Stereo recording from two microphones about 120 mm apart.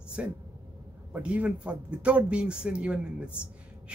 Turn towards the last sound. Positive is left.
turn(degrees=-10)  # may be behind; listen again after turning